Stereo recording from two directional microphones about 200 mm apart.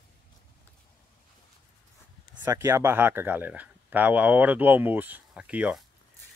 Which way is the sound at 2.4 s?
15° right (ahead or behind).